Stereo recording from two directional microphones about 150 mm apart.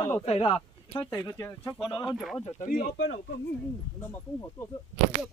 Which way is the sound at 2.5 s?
60° left (ahead or behind).